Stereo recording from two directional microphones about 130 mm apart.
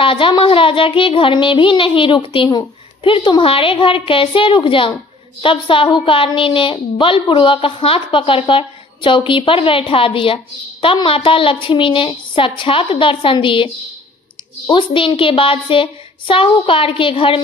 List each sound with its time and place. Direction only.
0.0 s a woman's voice: 40° left (ahead or behind)
14.7 s a woman's voice: 40° left (ahead or behind)